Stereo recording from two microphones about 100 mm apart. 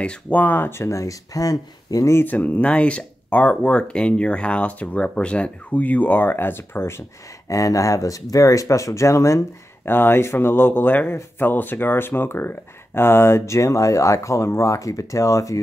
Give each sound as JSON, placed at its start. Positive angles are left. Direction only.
{"t": 0.0, "sound": "speech", "side_deg": 15}
{"t": 2.2, "sound": "speech", "side_deg": 15}